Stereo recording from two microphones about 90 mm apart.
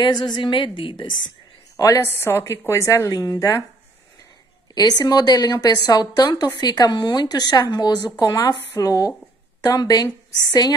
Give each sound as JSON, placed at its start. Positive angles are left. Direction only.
{"t": 0.0, "sound": "a woman's voice", "side_deg": 55}
{"t": 1.8, "sound": "a woman's voice", "side_deg": 40}
{"t": 2.0, "sound": "a woman's voice", "side_deg": 25}
{"t": 4.7, "sound": "a woman's voice", "side_deg": 50}